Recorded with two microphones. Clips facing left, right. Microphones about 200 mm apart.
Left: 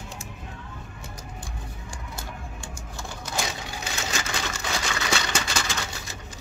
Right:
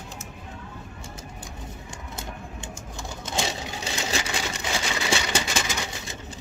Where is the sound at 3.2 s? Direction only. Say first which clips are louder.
Right 2 dB; 25° right (ahead or behind).